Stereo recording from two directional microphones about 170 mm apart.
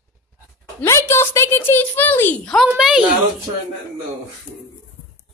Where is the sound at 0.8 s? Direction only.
15° left (ahead or behind); by 3.0 s 5° right (ahead or behind).